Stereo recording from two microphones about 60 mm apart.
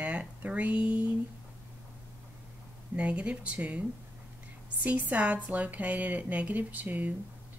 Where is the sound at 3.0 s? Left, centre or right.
Centre.